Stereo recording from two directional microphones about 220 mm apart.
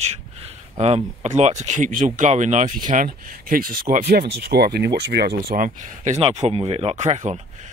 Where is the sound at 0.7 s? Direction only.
30° right (ahead or behind).